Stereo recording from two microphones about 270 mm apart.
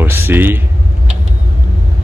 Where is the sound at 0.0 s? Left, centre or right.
Centre.